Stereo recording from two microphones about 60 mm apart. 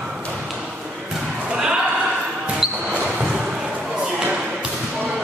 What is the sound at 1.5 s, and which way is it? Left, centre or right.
Basketball bounce, centre.